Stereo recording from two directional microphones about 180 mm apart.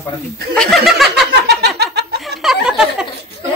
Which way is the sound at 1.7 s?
65° right (ahead or behind).